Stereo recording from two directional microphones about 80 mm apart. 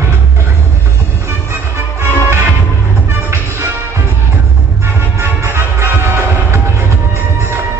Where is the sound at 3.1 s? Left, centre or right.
Right.